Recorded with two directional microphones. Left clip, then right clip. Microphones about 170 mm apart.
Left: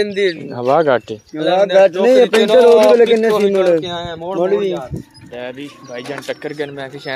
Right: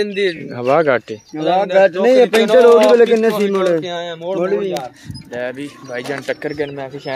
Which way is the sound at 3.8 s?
70° left (ahead or behind).